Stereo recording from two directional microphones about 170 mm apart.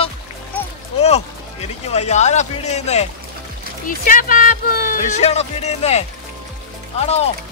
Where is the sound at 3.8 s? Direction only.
55° left (ahead or behind).